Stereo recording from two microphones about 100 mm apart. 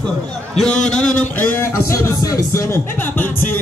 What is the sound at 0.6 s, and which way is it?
Speech, 5° left (ahead or behind).